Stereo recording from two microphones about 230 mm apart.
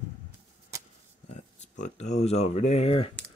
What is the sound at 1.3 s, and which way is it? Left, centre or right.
Speech, left.